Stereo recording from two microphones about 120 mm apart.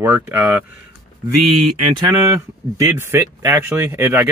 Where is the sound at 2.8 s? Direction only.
20° right (ahead or behind).